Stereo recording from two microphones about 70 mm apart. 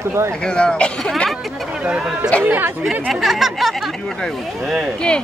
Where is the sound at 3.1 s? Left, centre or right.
Centre.